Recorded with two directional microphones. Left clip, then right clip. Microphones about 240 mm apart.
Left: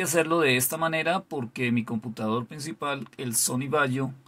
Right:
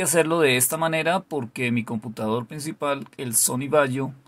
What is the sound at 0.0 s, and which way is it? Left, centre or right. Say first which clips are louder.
Speech: right 3 dB; centre.